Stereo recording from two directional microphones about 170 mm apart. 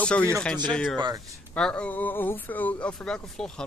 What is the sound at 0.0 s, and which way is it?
Speech, 5° left (ahead or behind).